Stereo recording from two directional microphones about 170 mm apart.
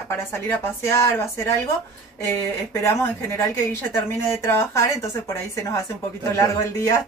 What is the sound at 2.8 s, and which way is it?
Speech, 15° left (ahead or behind).